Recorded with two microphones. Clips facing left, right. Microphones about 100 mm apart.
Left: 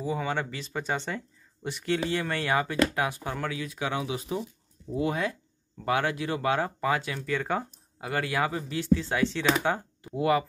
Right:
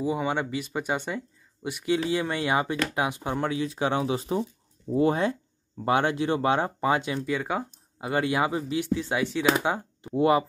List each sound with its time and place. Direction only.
0.0 s speech: 15° right (ahead or behind)
7.3 s speech: 10° right (ahead or behind)
8.0 s speech: 20° right (ahead or behind)